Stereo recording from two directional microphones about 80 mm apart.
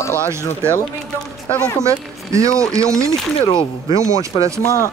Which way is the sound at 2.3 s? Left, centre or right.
Right.